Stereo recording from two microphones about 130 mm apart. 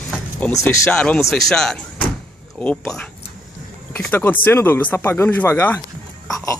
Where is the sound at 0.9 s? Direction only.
10° left (ahead or behind).